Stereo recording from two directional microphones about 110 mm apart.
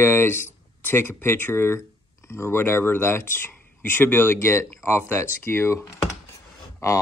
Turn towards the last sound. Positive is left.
turn(degrees=30)  # may be behind; listen again after turning